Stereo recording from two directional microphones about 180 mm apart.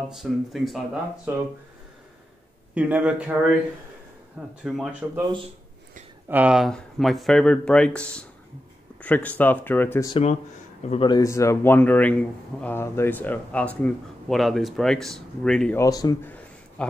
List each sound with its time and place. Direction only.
0.1 s speech: centre (ahead or behind)
2.7 s speech: 5° right (ahead or behind)
4.6 s speech: 5° right (ahead or behind)
6.2 s a man's voice: 10° right (ahead or behind); by 10.1 s 15° left (ahead or behind)
10.9 s a man's voice: 25° left (ahead or behind); by 15.8 s 5° left (ahead or behind)
15.8 s speech: 20° left (ahead or behind)